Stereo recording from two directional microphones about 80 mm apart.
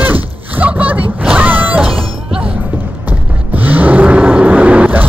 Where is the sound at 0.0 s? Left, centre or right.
Right.